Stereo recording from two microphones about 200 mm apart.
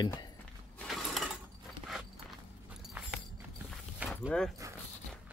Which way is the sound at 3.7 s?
5° right (ahead or behind).